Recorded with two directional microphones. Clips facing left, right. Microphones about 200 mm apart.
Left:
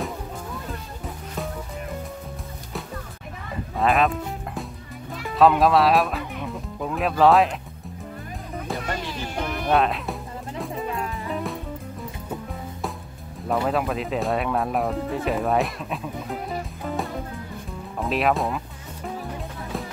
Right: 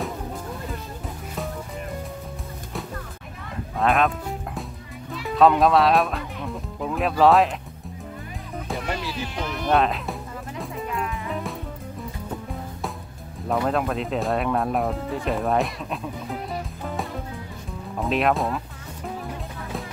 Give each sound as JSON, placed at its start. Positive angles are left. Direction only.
{"t": 3.7, "sound": "music", "side_deg": 0}
{"t": 5.3, "sound": "speech", "side_deg": 0}
{"t": 8.6, "sound": "music", "side_deg": 0}
{"t": 9.7, "sound": "speech", "side_deg": 0}
{"t": 11.0, "sound": "music", "side_deg": 35}
{"t": 13.5, "sound": "speech", "side_deg": 0}
{"t": 16.8, "sound": "music", "side_deg": 0}
{"t": 17.9, "sound": "speech", "side_deg": 0}